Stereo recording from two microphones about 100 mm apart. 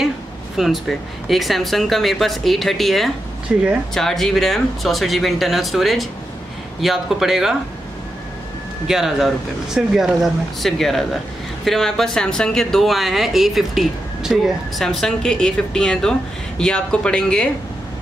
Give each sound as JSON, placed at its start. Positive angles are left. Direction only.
{"t": 0.6, "sound": "speech", "side_deg": 0}
{"t": 8.8, "sound": "speech", "side_deg": -5}